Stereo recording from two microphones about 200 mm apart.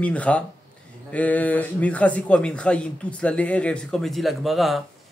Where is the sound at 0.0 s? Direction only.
5° left (ahead or behind).